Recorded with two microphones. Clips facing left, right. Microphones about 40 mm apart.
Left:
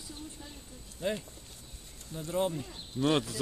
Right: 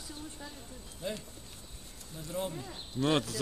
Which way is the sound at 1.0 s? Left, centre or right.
Left.